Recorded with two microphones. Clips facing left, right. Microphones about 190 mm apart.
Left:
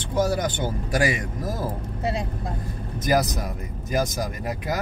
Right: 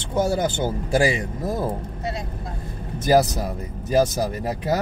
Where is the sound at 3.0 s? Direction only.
30° right (ahead or behind).